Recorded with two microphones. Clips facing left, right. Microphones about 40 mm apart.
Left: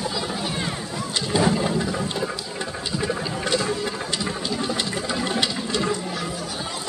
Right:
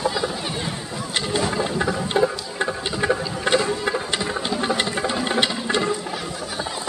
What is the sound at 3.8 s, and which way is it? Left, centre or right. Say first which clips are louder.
Music: right 3 dB; right.